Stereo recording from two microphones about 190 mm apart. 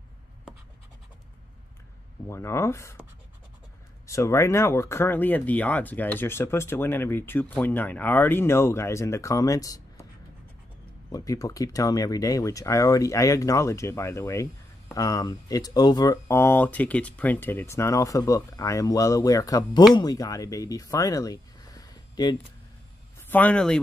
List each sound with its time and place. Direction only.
2.2 s speech: 15° left (ahead or behind)
4.1 s speech: 15° left (ahead or behind)
11.1 s speech: 20° left (ahead or behind)
23.2 s speech: 10° left (ahead or behind)